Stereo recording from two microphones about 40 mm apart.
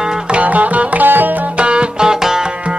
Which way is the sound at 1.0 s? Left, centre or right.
Right.